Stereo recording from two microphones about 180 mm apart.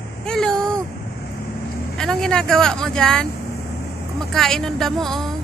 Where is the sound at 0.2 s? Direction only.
5° left (ahead or behind).